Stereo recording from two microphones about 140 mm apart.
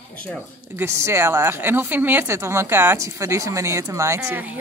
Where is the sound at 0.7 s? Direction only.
20° right (ahead or behind).